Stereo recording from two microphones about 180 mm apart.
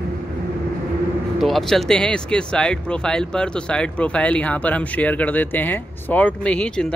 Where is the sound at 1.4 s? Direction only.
Centre (ahead or behind).